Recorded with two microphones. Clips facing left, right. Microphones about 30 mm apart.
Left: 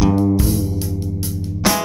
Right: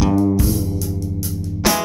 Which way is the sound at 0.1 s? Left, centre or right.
Left.